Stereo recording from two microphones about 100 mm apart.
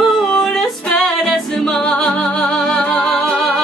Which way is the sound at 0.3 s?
5° left (ahead or behind).